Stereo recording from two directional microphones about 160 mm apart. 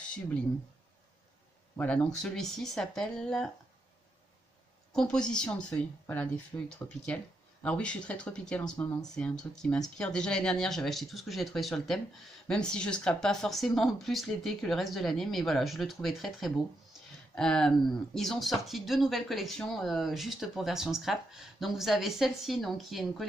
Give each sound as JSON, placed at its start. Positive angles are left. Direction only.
{"t": 1.8, "sound": "speech", "side_deg": 5}
{"t": 4.9, "sound": "speech", "side_deg": 5}
{"t": 6.5, "sound": "speech", "side_deg": 15}